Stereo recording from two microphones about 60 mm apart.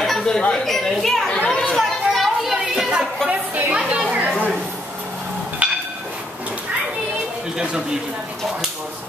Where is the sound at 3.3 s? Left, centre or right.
Right.